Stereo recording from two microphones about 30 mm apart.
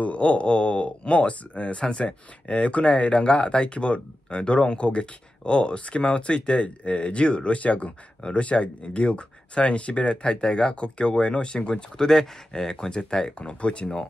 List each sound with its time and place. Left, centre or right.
0.0 s speech: left
8.2 s speech: left
12.0 s speech: centre; by 13.8 s left